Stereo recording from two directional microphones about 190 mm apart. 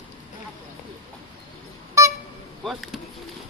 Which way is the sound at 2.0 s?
15° right (ahead or behind).